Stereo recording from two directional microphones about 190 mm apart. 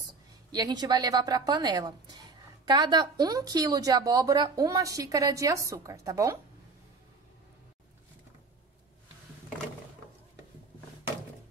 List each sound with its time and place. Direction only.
0.5 s a woman's voice: 20° right (ahead or behind)